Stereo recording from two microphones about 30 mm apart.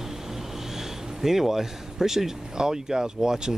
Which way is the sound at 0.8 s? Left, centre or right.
Centre.